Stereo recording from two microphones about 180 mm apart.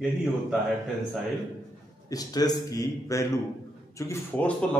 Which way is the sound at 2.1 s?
20° left (ahead or behind).